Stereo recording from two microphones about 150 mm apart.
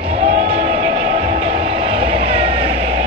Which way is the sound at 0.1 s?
50° right (ahead or behind).